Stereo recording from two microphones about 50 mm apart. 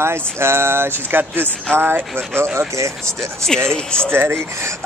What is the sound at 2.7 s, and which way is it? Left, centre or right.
Speech, right.